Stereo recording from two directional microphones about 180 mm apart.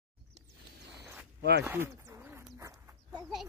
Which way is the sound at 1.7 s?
15° right (ahead or behind).